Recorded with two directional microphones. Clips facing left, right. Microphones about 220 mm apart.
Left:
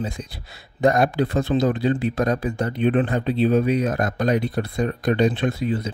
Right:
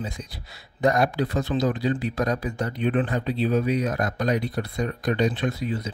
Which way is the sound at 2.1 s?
50° left (ahead or behind).